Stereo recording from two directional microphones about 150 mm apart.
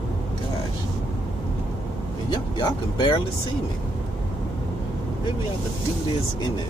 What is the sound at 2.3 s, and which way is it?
Speech, 30° left (ahead or behind).